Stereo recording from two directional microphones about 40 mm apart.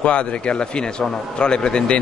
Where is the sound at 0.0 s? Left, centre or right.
Left.